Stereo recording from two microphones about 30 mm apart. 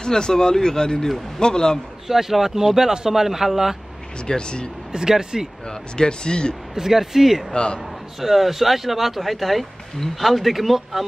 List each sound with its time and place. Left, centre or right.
0.0 s speech: left
2.0 s speech: centre
4.3 s speech: left
4.9 s speech: right
5.7 s speech: left
6.7 s speech: centre
7.5 s a man's voice: left
8.2 s speech: centre